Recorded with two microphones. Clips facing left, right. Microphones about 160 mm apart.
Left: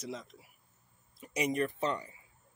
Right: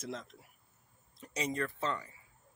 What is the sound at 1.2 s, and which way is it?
Speech, 15° left (ahead or behind).